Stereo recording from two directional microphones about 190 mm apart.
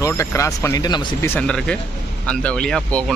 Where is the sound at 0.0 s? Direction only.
15° left (ahead or behind).